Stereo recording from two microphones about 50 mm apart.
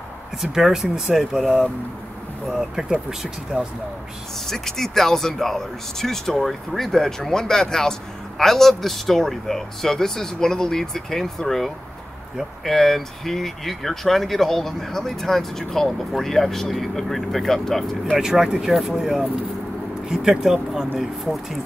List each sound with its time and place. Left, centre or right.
0.4 s speech: centre
3.5 s speech: right
4.5 s speech: centre
18.1 s speech: centre